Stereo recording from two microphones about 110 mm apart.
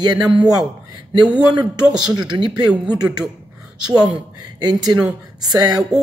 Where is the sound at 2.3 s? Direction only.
45° right (ahead or behind).